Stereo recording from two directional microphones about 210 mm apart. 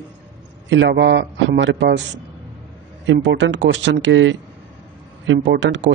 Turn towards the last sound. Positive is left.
turn(degrees=-60)  # may be behind; listen again after turning